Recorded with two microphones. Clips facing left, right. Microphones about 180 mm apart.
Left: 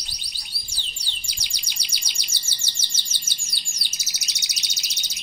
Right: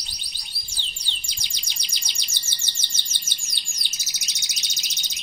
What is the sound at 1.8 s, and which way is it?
Chirp, 10° left (ahead or behind).